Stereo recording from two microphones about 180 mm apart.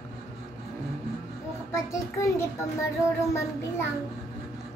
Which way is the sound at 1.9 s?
15° left (ahead or behind).